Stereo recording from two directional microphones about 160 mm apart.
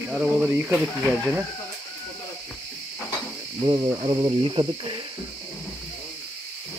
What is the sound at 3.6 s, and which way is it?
Speech, 25° right (ahead or behind).